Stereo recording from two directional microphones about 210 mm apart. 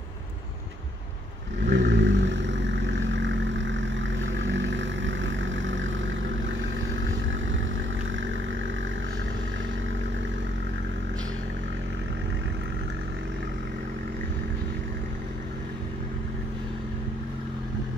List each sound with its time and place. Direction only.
1.7 s vehicle: 60° right (ahead or behind)